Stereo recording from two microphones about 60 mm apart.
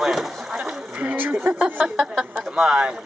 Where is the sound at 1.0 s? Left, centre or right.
Right.